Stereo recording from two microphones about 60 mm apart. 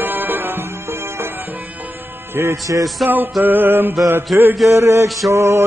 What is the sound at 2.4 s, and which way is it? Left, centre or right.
Music, right.